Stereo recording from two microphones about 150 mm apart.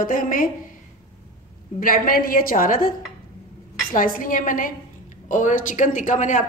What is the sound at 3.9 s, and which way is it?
A woman's voice, 65° left (ahead or behind).